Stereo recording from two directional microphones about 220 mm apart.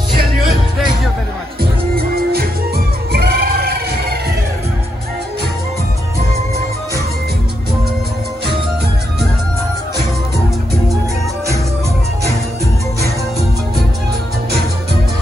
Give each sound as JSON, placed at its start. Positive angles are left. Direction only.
{"t": 1.6, "sound": "music", "side_deg": -45}